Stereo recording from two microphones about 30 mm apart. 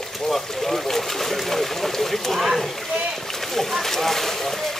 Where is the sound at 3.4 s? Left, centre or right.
Centre.